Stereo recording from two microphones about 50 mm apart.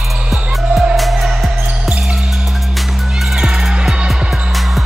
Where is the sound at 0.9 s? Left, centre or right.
Centre.